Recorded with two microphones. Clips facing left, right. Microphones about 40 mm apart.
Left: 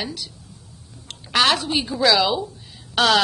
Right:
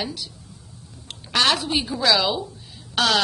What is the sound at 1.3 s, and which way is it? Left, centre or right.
A woman's voice, centre.